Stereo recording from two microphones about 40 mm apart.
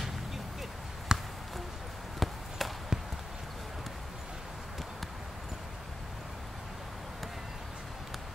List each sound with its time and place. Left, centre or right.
1.1 s basketball bounce: centre
2.1 s basketball bounce: centre
2.9 s a sound: centre